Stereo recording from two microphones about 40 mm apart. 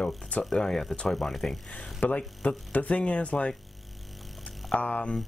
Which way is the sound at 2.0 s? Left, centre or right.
Left.